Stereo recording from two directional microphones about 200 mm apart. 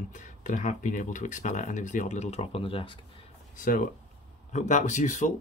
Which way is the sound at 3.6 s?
45° left (ahead or behind).